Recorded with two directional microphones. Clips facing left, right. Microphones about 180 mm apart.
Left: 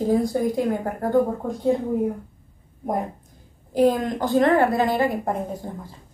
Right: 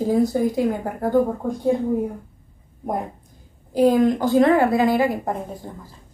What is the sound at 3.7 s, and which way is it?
A woman's voice, centre (ahead or behind).